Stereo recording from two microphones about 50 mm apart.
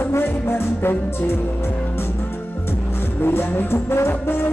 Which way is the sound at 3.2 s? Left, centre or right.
Left.